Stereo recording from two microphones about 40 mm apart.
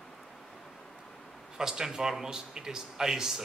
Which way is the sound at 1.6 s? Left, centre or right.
Centre.